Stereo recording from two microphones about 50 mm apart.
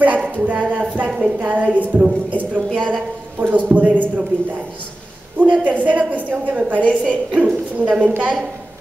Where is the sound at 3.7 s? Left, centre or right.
Right.